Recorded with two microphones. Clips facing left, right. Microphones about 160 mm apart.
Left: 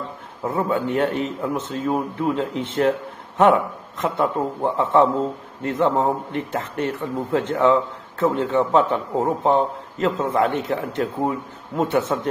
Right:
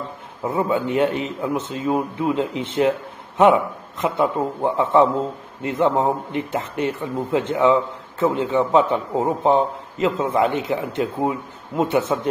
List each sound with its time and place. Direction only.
0.4 s a man's voice: 5° right (ahead or behind)